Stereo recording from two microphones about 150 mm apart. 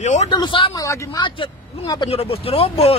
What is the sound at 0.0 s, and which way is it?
Speech, 50° left (ahead or behind).